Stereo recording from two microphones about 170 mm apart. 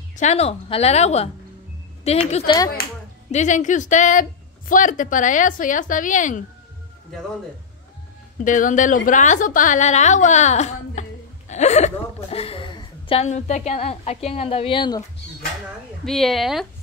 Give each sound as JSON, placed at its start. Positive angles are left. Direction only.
{"t": 0.1, "sound": "a woman's voice", "side_deg": 40}
{"t": 3.3, "sound": "a woman's voice", "side_deg": 45}
{"t": 8.4, "sound": "a woman's voice", "side_deg": 50}
{"t": 16.1, "sound": "a woman's voice", "side_deg": 0}